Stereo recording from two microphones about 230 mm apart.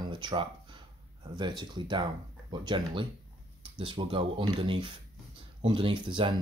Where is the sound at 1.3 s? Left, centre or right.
Centre.